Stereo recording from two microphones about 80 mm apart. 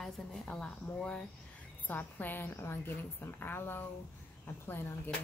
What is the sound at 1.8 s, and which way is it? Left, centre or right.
A woman's voice, left.